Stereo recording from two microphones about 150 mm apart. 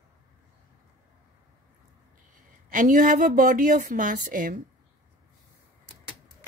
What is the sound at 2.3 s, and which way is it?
Speech, 60° right (ahead or behind).